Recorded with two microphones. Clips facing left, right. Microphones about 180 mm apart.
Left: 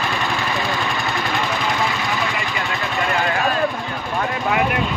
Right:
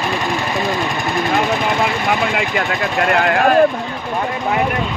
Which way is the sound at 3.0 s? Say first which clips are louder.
Right 7 dB; 65° right (ahead or behind).